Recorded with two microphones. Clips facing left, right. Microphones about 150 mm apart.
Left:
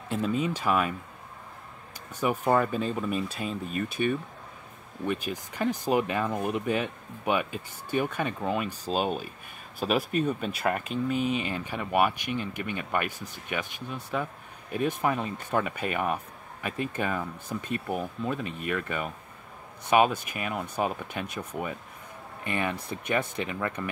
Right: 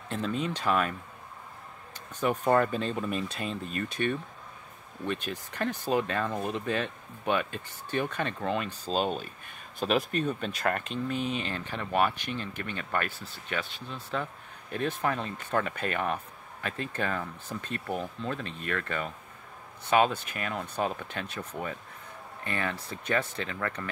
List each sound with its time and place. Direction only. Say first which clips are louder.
0.1 s speech: left 3 dB; 5° left (ahead or behind)
2.1 s speech: even; 10° left (ahead or behind)